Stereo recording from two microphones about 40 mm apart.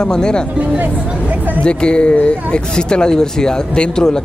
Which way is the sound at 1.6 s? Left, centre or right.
Left.